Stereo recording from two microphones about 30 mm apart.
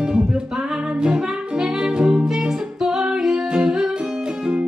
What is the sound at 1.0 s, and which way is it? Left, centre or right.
Saxophone, right.